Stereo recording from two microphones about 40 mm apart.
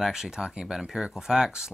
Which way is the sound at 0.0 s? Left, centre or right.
Centre.